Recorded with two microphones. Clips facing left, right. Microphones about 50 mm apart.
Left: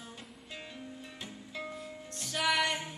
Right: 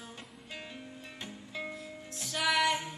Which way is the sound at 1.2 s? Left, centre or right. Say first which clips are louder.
Right 2 dB; centre.